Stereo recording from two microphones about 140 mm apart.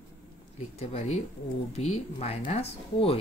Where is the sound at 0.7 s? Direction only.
50° left (ahead or behind).